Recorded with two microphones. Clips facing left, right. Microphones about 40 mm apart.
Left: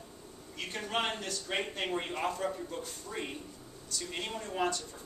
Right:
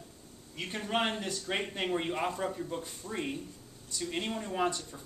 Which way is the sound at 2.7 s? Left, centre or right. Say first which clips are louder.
Right 2 dB; right.